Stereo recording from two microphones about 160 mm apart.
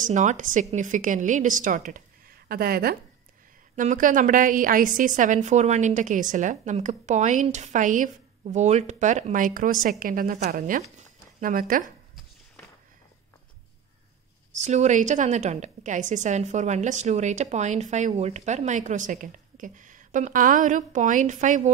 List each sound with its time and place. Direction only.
0.0 s a woman's voice: 50° right (ahead or behind); by 3.0 s 70° right (ahead or behind)
3.7 s a woman's voice: 55° right (ahead or behind)
10.8 s a sound: 45° right (ahead or behind)
11.4 s a woman's voice: 60° right (ahead or behind)
14.5 s a woman's voice: 45° right (ahead or behind)